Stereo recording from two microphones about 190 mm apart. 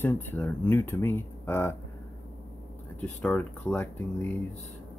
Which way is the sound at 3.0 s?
5° left (ahead or behind).